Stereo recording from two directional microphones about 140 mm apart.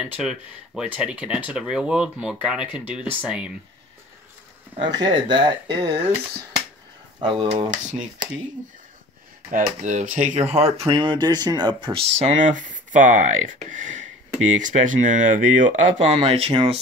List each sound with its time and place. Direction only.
0.0 s speech: 5° right (ahead or behind)
4.7 s speech: 35° right (ahead or behind)
7.2 s speech: 35° right (ahead or behind)
7.4 s speech: 60° right (ahead or behind)
9.5 s speech: 65° right (ahead or behind); by 12.0 s 35° right (ahead or behind)
12.2 s speech: 65° right (ahead or behind)
16.2 s speech: 45° right (ahead or behind)